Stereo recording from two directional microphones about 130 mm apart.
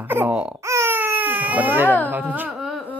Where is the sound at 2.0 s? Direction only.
15° right (ahead or behind).